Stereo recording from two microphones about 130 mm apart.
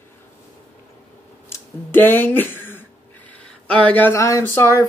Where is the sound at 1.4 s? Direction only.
15° left (ahead or behind).